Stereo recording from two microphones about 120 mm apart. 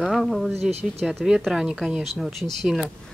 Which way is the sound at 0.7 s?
60° right (ahead or behind).